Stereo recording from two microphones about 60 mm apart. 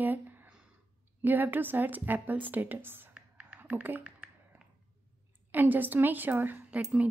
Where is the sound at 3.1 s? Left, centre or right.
Centre.